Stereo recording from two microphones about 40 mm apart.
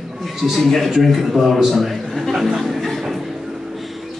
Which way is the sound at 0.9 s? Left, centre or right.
Centre.